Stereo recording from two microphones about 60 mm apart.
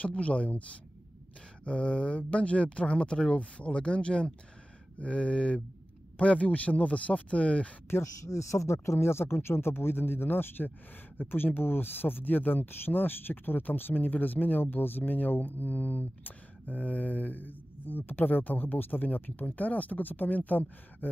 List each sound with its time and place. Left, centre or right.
0.0 s speech: left
8.0 s speech: left